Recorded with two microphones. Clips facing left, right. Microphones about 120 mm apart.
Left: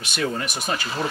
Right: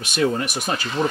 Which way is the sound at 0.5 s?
5° right (ahead or behind).